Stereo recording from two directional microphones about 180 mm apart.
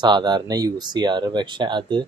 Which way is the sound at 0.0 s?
25° right (ahead or behind).